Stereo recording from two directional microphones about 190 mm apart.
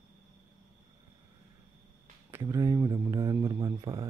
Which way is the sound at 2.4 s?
15° right (ahead or behind).